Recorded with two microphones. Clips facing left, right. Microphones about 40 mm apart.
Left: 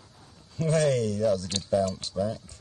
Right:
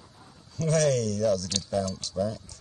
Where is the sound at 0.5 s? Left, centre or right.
Left.